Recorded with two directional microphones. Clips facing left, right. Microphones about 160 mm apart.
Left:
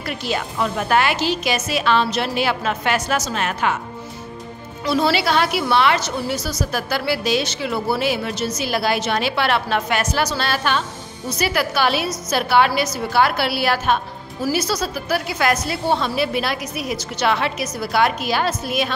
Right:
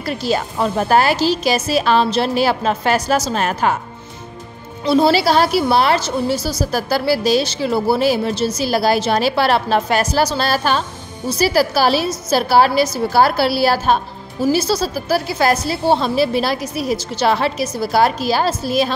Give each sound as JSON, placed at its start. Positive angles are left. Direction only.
{"t": 0.0, "sound": "a woman's voice", "side_deg": -35}
{"t": 4.8, "sound": "a woman's voice", "side_deg": -30}